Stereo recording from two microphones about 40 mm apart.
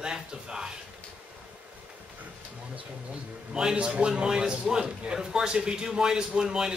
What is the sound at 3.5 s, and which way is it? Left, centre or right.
A man's voice, centre.